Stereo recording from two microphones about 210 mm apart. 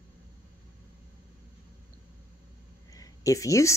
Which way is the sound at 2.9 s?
15° left (ahead or behind).